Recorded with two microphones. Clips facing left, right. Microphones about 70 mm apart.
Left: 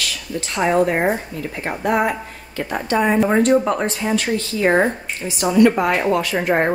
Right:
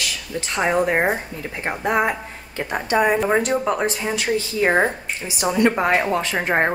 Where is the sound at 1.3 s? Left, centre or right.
Right.